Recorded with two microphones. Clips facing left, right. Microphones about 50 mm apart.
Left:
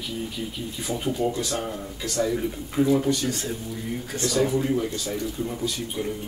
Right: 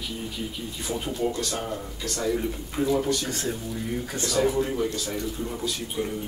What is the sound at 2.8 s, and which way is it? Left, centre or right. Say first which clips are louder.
Speech: left 4 dB; left.